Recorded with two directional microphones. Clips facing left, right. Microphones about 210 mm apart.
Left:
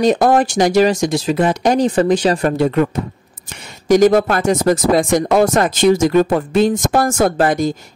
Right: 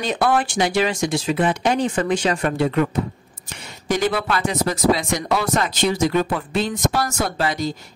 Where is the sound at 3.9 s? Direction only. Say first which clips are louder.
Left 10 dB; 45° left (ahead or behind).